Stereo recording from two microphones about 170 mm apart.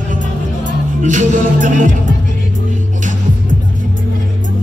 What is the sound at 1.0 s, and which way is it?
Music, 50° right (ahead or behind).